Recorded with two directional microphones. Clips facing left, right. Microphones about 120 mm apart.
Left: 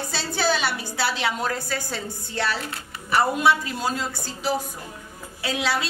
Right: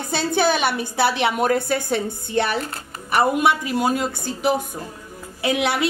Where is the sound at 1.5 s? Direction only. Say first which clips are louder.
Right 8 dB; 60° right (ahead or behind).